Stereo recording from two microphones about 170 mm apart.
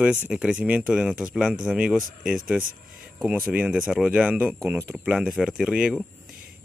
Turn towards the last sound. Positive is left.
turn(degrees=-5)  # may be behind; listen again after turning